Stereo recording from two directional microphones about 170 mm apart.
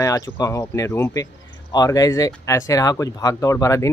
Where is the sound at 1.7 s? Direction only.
20° left (ahead or behind).